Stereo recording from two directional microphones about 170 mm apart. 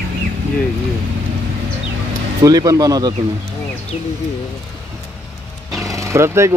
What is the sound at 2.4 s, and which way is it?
Speech, 20° right (ahead or behind).